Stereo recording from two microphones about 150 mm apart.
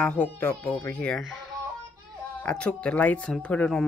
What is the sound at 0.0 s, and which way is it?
Speech, 10° left (ahead or behind).